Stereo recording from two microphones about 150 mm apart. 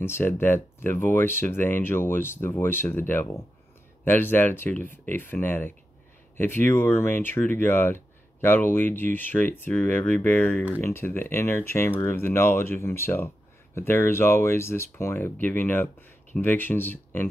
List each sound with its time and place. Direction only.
0.0 s speech: 15° left (ahead or behind)